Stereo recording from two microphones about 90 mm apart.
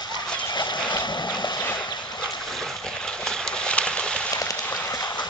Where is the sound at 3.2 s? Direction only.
10° left (ahead or behind).